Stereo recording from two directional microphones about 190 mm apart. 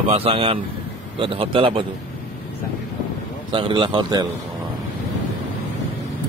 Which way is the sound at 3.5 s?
25° right (ahead or behind).